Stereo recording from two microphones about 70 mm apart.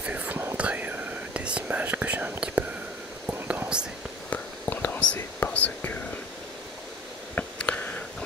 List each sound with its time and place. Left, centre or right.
0.0 s whispering: right
4.3 s whispering: left
7.3 s a sound: centre